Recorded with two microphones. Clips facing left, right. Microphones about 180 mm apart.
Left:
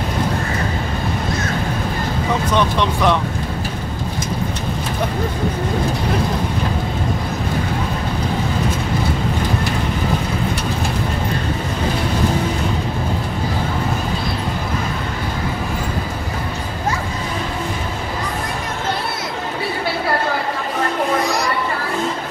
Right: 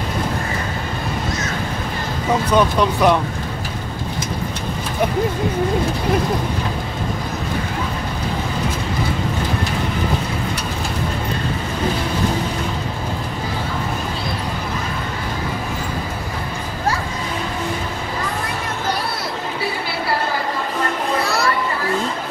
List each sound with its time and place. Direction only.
2.5 s speech: 10° right (ahead or behind)
21.2 s children playing: 15° left (ahead or behind)